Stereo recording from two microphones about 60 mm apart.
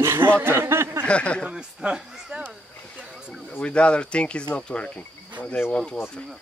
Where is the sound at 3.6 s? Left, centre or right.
Centre.